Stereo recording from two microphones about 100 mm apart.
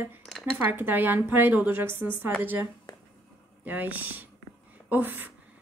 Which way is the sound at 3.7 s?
15° right (ahead or behind).